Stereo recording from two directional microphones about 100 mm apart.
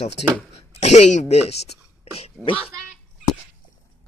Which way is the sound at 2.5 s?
65° left (ahead or behind).